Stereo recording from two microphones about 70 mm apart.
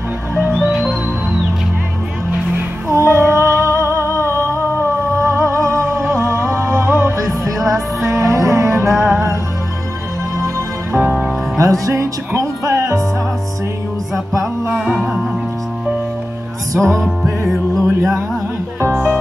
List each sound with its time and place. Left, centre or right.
2.9 s humming: right
4.7 s music: right
11.0 s music: centre
11.5 s music: right
14.9 s music: centre
16.7 s music: right